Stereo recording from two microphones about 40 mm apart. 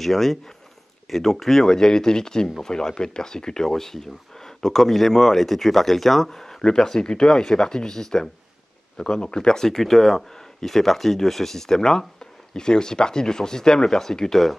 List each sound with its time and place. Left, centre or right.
0.0 s speech: centre
9.7 s speech: centre